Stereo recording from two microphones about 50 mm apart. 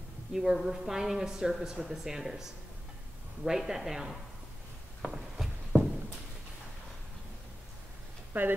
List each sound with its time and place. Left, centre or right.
0.3 s a woman's voice: centre
3.4 s a woman's voice: centre
5.0 s a sound: centre
8.3 s speech: right